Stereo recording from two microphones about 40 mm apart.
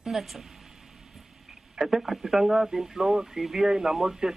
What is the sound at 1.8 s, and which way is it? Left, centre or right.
A woman's voice, centre.